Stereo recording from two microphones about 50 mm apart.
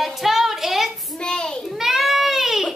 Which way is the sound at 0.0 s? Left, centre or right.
Centre.